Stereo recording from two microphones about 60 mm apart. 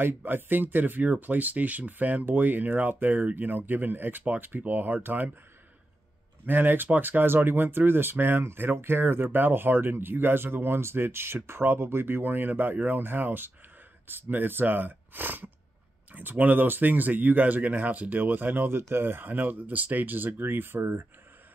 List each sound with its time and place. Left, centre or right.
0.0 s speech: right
6.4 s speech: right